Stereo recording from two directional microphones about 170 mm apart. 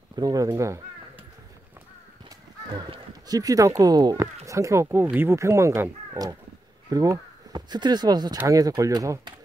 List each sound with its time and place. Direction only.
0.1 s speech: 20° right (ahead or behind)
2.7 s speech: 25° right (ahead or behind)